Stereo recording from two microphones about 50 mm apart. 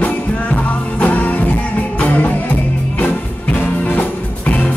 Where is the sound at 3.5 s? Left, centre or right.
Left.